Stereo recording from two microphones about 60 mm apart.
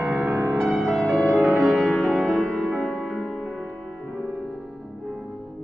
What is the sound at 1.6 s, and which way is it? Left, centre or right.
Music, centre.